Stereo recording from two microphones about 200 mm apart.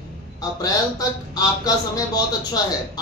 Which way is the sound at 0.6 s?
20° left (ahead or behind).